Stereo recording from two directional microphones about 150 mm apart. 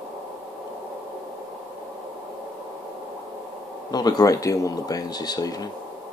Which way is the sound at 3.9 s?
25° left (ahead or behind).